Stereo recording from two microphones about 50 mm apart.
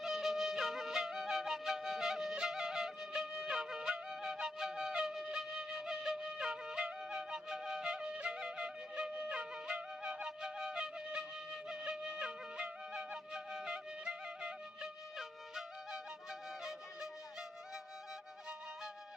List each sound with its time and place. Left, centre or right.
0.0 s music: centre; by 9.8 s right
10.2 s music: centre